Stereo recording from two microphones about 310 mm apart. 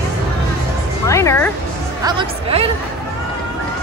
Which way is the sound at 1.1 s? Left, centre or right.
Centre.